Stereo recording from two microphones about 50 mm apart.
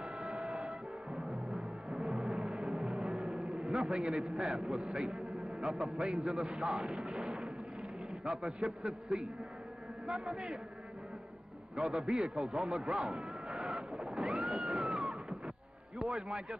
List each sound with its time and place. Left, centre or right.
0.0 s music: centre
3.9 s a man's voice: centre
7.2 s a sound: centre
8.3 s a man's voice: centre
11.7 s a man's voice: centre
14.2 s a sound: centre
16.0 s a man's voice: centre